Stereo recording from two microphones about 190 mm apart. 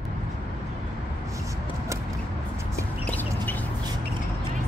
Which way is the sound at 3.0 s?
10° left (ahead or behind).